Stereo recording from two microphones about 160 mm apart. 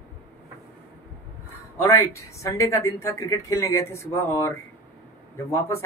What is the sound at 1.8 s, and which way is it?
Speech, 20° left (ahead or behind).